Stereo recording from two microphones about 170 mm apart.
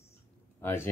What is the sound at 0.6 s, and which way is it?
Speech, 15° left (ahead or behind).